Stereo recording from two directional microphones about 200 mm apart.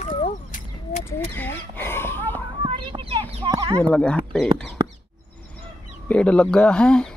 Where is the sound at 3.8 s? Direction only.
5° left (ahead or behind).